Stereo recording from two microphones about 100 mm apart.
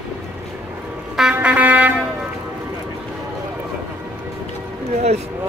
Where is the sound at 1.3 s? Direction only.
15° right (ahead or behind).